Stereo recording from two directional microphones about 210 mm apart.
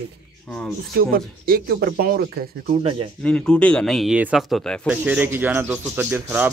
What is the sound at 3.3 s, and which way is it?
Speech, 5° left (ahead or behind).